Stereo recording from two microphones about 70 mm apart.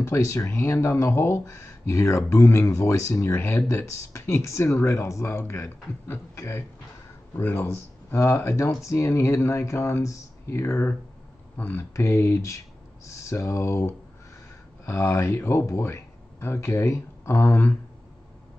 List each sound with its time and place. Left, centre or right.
0.0 s speech: left
11.5 s speech: left
11.9 s speech: left
17.5 s speech: left